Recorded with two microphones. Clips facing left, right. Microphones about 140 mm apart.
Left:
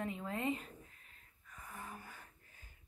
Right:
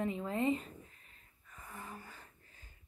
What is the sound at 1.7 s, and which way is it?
Gasp, 5° left (ahead or behind).